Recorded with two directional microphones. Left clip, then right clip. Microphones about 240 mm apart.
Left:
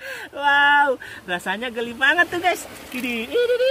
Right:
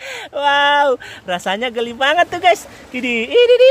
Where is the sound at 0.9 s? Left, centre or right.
Right.